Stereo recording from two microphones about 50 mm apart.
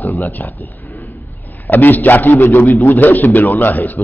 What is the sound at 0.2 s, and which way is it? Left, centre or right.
A man's voice, left.